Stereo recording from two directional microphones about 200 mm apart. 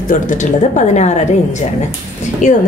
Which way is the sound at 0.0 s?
40° left (ahead or behind).